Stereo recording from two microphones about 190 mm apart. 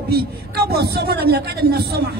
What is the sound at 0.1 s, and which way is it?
A man's voice, 55° right (ahead or behind).